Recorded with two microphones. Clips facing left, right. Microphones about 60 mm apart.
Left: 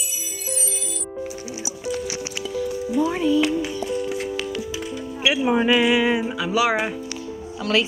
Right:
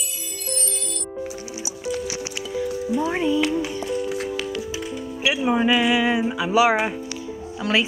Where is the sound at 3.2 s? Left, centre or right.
Centre.